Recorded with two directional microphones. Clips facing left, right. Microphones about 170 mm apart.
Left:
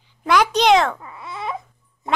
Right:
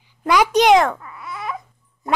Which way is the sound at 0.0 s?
10° right (ahead or behind).